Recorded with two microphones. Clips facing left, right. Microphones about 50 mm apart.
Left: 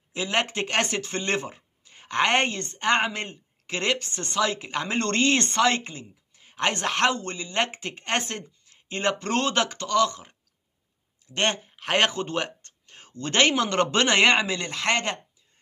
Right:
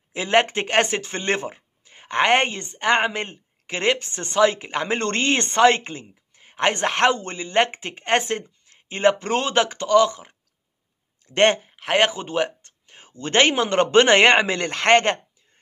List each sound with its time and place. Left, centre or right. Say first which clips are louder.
0.1 s speech: right 7 dB; right
11.2 s speech: right 8 dB; right
11.7 s speech: right 3 dB; centre; by 15.1 s right